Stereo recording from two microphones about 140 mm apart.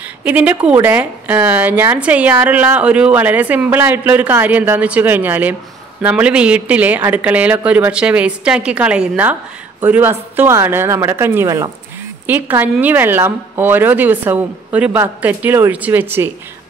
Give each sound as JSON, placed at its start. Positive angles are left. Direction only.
{"t": 0.2, "sound": "speech", "side_deg": -10}